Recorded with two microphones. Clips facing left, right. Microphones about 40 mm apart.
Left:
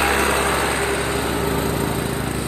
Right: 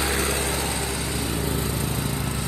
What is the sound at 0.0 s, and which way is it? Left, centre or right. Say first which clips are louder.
Vehicle: left 7 dB; left.